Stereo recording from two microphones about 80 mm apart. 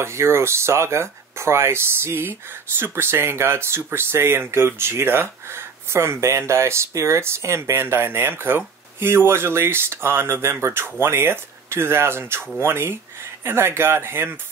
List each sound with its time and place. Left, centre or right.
0.0 s speech: right